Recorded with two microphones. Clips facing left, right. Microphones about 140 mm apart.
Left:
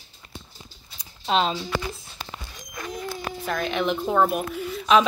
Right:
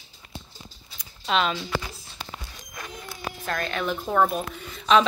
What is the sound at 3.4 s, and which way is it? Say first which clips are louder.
Speech: left 2 dB; 5° left (ahead or behind).